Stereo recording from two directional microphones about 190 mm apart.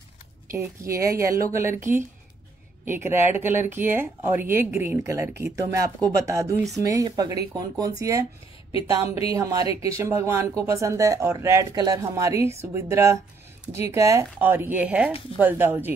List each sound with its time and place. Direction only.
0.5 s speech: 15° right (ahead or behind)